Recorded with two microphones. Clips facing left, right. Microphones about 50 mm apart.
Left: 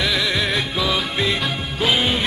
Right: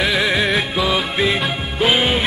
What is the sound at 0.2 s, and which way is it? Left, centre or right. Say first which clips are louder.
Music: right 4 dB; right.